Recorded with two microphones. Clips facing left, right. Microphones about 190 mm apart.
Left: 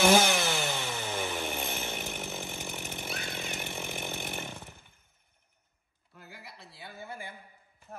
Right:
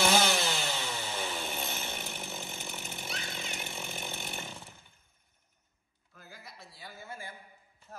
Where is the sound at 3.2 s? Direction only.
55° left (ahead or behind).